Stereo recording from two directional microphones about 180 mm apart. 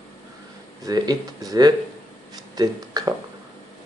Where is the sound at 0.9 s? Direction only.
20° right (ahead or behind).